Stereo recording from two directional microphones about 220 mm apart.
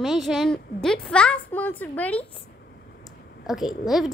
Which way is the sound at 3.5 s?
Centre (ahead or behind).